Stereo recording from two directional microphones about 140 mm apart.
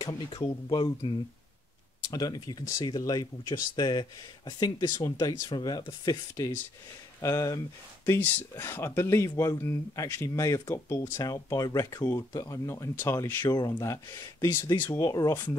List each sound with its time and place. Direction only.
0.7 s speech: 40° left (ahead or behind)
2.0 s speech: 30° left (ahead or behind)